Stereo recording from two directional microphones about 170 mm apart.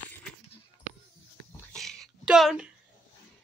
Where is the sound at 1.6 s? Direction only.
5° left (ahead or behind).